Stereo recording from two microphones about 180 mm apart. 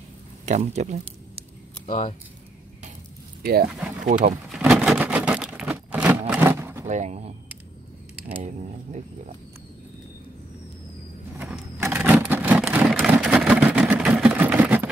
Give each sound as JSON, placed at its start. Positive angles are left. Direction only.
{"t": 0.5, "sound": "speech", "side_deg": -40}
{"t": 1.9, "sound": "speech", "side_deg": 35}
{"t": 4.0, "sound": "speech", "side_deg": -45}
{"t": 4.6, "sound": "a sound", "side_deg": -5}
{"t": 6.9, "sound": "speech", "side_deg": -40}
{"t": 11.8, "sound": "vehicle", "side_deg": -10}